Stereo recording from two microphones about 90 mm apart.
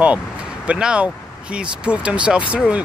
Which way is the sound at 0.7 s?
10° right (ahead or behind).